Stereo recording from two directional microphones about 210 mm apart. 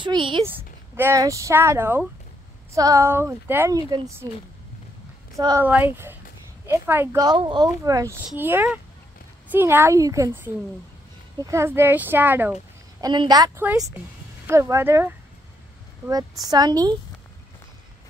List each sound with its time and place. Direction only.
0.0 s a woman's voice: 25° right (ahead or behind)
0.9 s speech: 10° right (ahead or behind)
13.0 s a woman's voice: 20° right (ahead or behind)
16.1 s speech: 15° right (ahead or behind)